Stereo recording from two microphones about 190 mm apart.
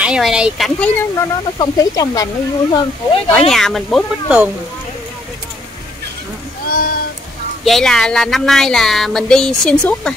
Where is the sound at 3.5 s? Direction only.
Centre (ahead or behind).